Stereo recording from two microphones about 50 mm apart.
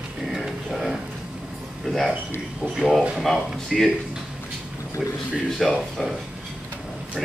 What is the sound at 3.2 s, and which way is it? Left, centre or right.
Speech, centre.